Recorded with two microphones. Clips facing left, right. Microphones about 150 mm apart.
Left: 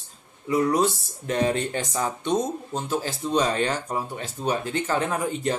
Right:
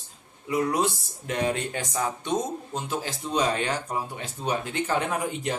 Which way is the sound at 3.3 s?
10° right (ahead or behind).